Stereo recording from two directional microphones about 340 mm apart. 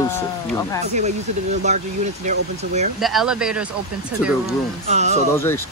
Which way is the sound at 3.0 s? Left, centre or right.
Centre.